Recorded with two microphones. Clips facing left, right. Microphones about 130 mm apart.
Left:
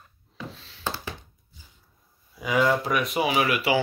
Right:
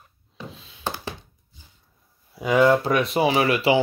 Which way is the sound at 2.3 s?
30° right (ahead or behind).